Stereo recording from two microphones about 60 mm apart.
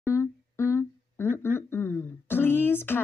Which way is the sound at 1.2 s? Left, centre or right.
Left.